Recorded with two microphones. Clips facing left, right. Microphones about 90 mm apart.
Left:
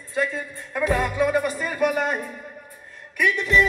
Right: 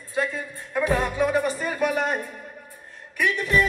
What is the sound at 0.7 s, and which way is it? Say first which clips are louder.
Music: even; 20° right (ahead or behind).